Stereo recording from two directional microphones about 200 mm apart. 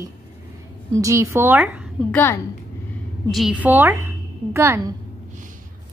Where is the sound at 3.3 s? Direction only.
5° right (ahead or behind).